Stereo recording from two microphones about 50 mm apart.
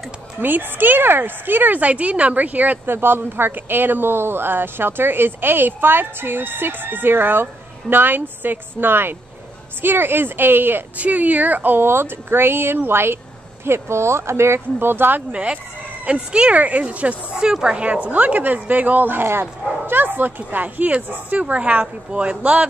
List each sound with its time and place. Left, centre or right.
0.4 s speech: right
2.9 s speech: right
11.0 s speech: right
11.8 s speech: right
13.7 s speech: right
15.3 s speech: right
17.4 s speech: centre
17.8 s speech: right